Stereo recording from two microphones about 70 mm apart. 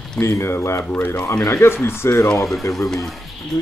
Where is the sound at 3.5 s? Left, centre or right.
Left.